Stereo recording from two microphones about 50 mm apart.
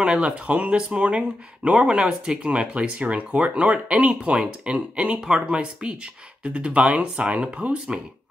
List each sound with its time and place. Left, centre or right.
0.0 s speech: centre